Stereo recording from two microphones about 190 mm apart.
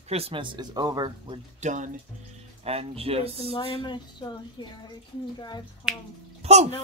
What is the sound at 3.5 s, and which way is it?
Speech, 30° left (ahead or behind).